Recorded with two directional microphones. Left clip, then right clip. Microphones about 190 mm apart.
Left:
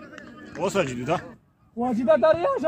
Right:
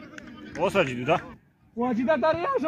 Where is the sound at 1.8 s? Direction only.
80° left.